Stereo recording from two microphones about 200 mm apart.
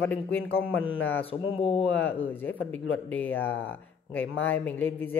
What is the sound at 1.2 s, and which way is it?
Speech, 30° left (ahead or behind).